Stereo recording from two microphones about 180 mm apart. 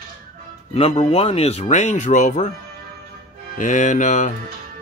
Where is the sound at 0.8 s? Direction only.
35° left (ahead or behind).